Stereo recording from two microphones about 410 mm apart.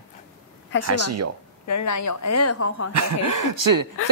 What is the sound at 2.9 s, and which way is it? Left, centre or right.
Speech, right.